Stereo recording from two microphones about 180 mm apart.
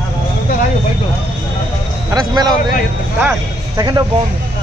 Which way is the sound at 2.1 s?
20° right (ahead or behind).